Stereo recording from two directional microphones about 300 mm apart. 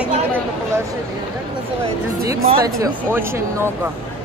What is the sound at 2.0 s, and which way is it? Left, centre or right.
Speech, centre.